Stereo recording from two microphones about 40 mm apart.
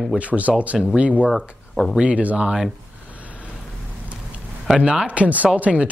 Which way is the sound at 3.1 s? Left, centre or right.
Right.